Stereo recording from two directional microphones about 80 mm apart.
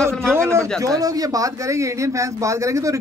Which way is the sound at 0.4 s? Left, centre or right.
Right.